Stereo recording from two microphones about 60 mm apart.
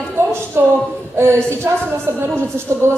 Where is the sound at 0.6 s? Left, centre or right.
Right.